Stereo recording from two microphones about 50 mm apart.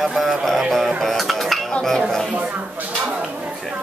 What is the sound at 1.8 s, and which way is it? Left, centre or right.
Dishes, centre.